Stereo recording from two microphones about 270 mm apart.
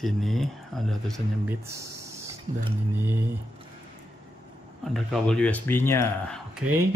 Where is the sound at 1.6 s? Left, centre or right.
Centre.